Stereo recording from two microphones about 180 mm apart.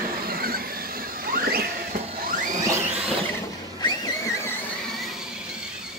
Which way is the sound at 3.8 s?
20° left (ahead or behind).